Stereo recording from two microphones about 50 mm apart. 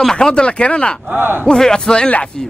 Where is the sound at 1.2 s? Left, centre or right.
Right.